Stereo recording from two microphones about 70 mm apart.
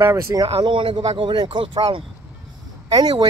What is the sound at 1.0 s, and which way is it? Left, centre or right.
Speech, right.